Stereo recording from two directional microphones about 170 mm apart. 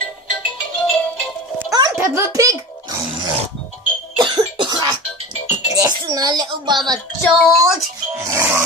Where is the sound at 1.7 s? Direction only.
20° right (ahead or behind).